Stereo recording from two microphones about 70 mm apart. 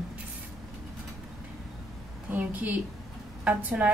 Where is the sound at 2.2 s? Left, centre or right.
Right.